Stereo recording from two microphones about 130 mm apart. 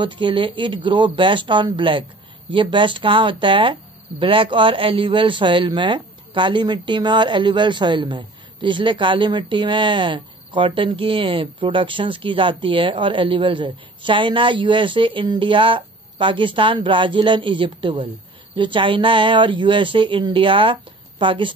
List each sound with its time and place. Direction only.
0.0 s a man's voice: 40° right (ahead or behind)